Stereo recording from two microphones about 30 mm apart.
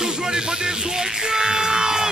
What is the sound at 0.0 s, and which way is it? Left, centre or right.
Music, right.